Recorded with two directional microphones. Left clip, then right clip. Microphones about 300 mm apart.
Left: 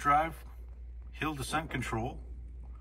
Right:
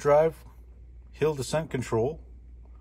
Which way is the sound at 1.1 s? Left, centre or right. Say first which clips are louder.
Right 7 dB; centre.